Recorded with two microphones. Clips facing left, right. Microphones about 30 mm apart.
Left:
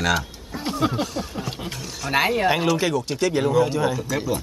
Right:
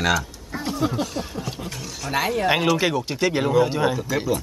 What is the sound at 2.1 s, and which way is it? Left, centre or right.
Speech, left.